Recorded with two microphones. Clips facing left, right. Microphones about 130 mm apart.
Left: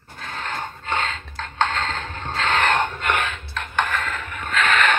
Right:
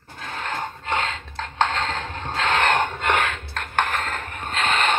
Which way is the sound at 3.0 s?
75° right (ahead or behind).